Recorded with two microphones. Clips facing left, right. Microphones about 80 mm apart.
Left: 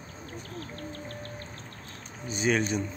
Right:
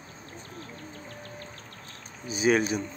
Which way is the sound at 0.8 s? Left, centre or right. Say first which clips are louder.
Left 3 dB; left.